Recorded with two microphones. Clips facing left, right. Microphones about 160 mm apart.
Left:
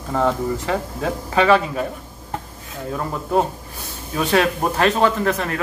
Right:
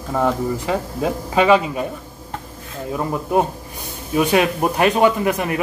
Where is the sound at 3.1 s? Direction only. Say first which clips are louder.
Right 1 dB; 15° right (ahead or behind).